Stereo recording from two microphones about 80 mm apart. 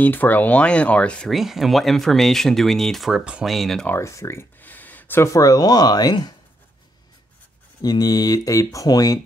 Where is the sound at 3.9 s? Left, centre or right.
Left.